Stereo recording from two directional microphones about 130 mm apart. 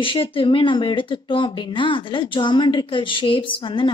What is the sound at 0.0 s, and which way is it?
Speech, 40° left (ahead or behind).